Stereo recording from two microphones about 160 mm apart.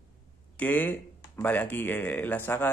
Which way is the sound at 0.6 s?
10° left (ahead or behind).